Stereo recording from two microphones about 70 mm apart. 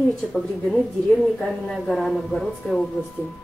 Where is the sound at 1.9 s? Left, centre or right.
Centre.